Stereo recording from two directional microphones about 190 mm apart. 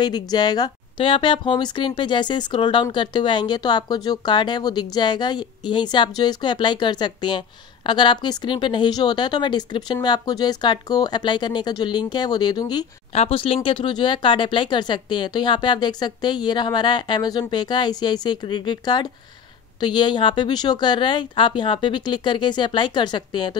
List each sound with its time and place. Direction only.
0.0 s speech: 20° left (ahead or behind)